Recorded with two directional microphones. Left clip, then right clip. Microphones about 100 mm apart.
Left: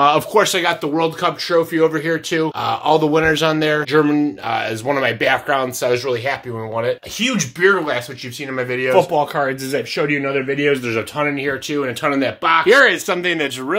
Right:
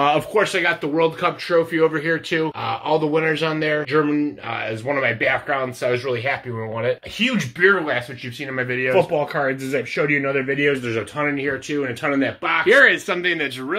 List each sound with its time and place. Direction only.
0.0 s speech: 35° left (ahead or behind)
1.5 s speech: 25° left (ahead or behind)
2.6 s speech: 50° left (ahead or behind); by 11.0 s 30° left (ahead or behind)
11.0 s speech: 45° left (ahead or behind)
13.2 s speech: 60° left (ahead or behind)